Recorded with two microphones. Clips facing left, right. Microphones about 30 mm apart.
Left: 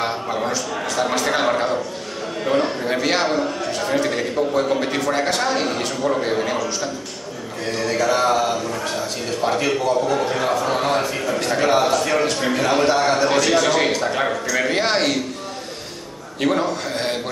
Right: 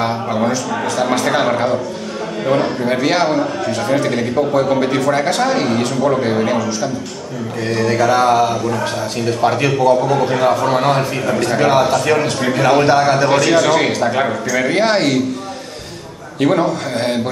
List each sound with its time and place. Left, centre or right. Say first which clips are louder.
0.0 s a man's voice: right 5 dB; centre
12.6 s a man's voice: right 6 dB; centre
16.3 s a man's voice: right 5 dB; centre